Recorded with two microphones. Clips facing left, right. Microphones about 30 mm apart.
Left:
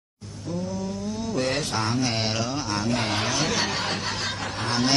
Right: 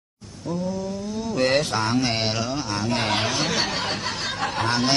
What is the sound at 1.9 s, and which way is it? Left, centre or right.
Mantra, right.